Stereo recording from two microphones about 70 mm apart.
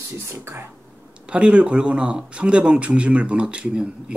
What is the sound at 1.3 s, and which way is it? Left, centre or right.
Speech, centre.